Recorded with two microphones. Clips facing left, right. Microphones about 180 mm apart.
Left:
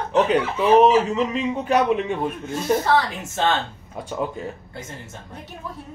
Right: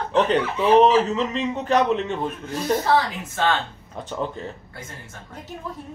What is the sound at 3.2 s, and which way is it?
Speech, 25° left (ahead or behind).